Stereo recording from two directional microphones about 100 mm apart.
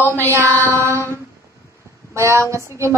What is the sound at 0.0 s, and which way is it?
Mantra, 20° left (ahead or behind).